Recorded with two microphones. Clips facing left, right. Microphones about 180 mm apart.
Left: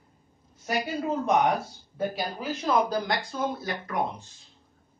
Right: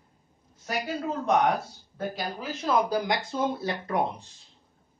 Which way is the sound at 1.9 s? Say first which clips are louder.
Left 2 dB; 5° left (ahead or behind).